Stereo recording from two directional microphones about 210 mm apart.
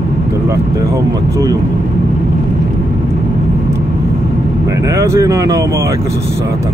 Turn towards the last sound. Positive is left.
turn(degrees=-15)  # may be behind; listen again after turning